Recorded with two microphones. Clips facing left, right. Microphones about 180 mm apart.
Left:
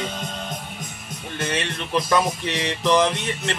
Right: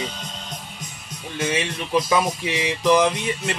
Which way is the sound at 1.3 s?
5° right (ahead or behind).